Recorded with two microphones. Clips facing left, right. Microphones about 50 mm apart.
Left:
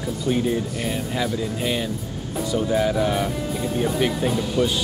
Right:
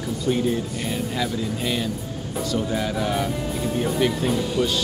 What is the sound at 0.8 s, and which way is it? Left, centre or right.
Speech, centre.